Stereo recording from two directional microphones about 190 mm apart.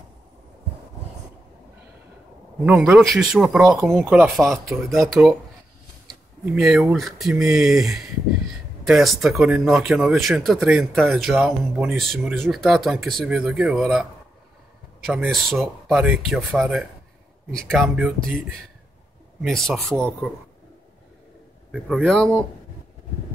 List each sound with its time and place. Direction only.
2.6 s speech: 10° right (ahead or behind)
4.0 s speech: 10° right (ahead or behind)
4.6 s speech: centre (ahead or behind)
6.0 s speech: 5° right (ahead or behind)
15.0 s speech: centre (ahead or behind)
19.4 s speech: centre (ahead or behind)
21.7 s speech: centre (ahead or behind)